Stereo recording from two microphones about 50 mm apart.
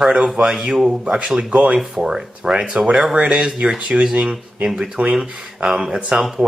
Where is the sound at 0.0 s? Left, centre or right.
Right.